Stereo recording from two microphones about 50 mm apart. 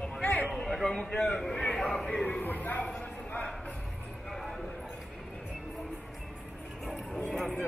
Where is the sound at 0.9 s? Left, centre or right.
Centre.